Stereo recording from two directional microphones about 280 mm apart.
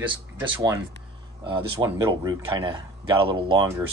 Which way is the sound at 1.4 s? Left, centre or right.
Centre.